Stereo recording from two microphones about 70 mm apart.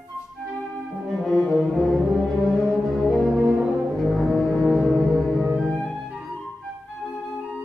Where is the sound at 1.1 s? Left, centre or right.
Centre.